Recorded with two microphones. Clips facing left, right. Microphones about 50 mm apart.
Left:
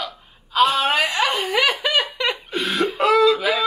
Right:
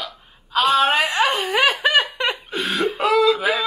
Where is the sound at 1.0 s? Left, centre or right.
Right.